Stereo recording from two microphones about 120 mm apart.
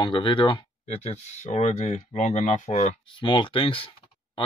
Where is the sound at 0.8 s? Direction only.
75° left (ahead or behind).